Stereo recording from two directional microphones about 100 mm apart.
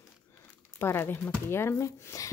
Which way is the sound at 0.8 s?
25° left (ahead or behind).